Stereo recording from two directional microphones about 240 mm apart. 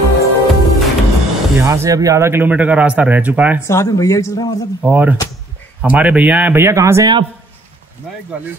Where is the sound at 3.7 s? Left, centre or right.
Centre.